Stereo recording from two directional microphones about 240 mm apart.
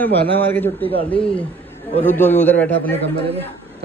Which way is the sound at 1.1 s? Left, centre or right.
Centre.